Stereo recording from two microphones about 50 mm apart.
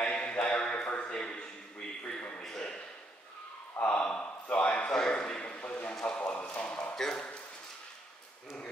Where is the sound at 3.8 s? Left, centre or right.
Left.